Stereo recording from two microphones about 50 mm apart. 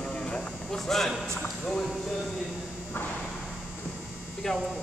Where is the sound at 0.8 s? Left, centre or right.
Centre.